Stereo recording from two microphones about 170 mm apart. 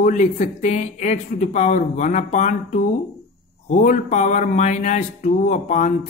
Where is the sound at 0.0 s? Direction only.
45° left (ahead or behind).